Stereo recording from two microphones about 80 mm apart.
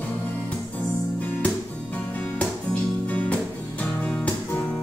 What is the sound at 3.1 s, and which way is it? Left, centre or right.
Music, centre.